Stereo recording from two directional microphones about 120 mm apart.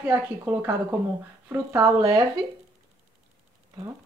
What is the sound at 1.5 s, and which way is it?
Speech, 25° right (ahead or behind).